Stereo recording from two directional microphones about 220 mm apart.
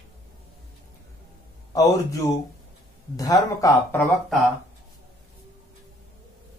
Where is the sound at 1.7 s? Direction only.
15° left (ahead or behind).